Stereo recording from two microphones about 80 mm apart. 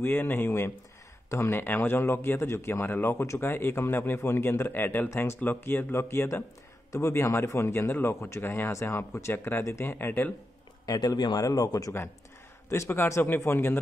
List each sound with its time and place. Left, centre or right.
0.0 s a man's voice: left
10.9 s a man's voice: left
11.3 s a man's voice: left
13.4 s a man's voice: left